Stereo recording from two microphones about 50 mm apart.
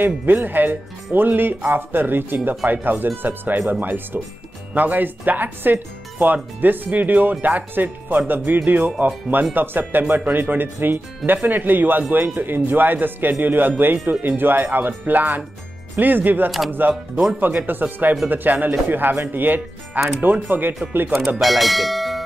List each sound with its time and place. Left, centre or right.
0.0 s speech: right
16.4 s speech: centre
17.4 s speech: right
21.4 s speech: centre